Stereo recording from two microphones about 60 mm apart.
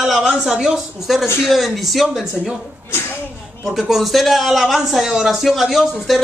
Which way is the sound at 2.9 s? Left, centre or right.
Left.